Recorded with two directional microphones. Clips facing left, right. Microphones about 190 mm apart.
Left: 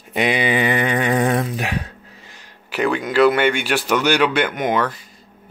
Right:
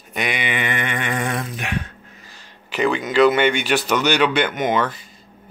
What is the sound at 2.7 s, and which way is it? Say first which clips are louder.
Speech: even; 5° left (ahead or behind).